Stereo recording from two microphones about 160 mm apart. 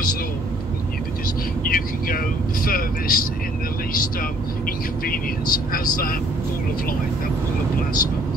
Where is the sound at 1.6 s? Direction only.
65° left (ahead or behind).